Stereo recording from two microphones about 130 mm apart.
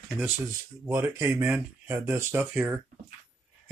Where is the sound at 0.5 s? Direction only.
20° right (ahead or behind).